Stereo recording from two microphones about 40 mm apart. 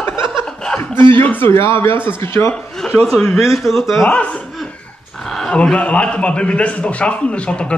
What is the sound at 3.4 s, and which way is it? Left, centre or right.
Speech, centre.